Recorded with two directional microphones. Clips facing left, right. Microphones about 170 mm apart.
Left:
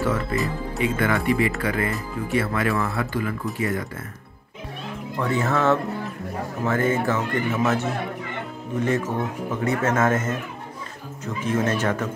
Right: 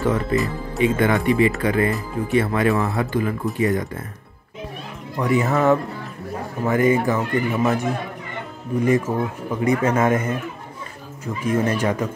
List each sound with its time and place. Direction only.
0.0 s speech: 25° right (ahead or behind)
5.1 s speech: 15° right (ahead or behind)